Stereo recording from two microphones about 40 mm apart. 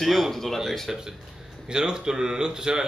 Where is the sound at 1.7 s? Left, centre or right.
Centre.